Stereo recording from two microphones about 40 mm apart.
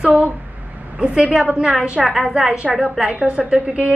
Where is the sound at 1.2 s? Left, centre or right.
Right.